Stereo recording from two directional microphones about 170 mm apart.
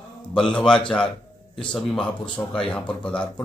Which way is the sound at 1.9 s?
5° left (ahead or behind).